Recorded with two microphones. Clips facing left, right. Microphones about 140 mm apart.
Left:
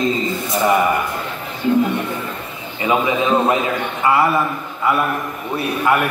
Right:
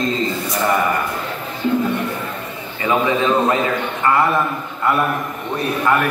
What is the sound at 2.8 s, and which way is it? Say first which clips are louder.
A man's voice: even; 15° left (ahead or behind).